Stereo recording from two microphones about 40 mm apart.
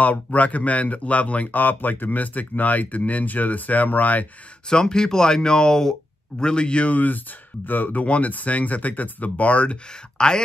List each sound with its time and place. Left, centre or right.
0.0 s speech: left
1.5 s speech: left
4.6 s a man's voice: centre
7.6 s speech: left
8.0 s speech: left
10.1 s speech: centre